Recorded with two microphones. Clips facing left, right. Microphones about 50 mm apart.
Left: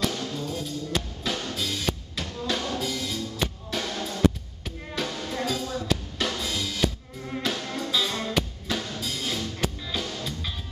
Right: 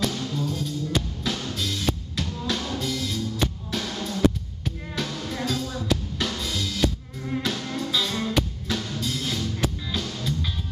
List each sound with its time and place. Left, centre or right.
0.0 s music: centre
4.6 s drum: centre